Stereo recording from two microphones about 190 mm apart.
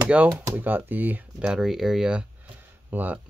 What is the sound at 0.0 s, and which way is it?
Speech, 10° right (ahead or behind).